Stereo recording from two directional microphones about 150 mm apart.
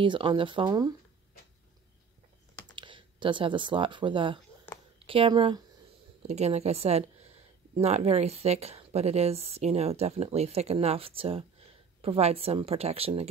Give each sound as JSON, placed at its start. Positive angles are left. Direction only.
{"t": 0.0, "sound": "speech", "side_deg": -35}
{"t": 2.7, "sound": "speech", "side_deg": -30}
{"t": 6.2, "sound": "speech", "side_deg": -45}